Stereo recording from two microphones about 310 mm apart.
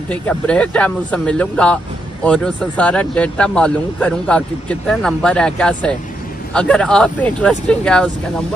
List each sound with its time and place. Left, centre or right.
0.1 s a man's voice: centre